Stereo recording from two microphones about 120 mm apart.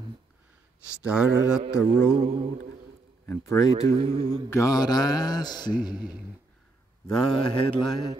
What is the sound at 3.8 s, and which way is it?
Speech, 60° right (ahead or behind).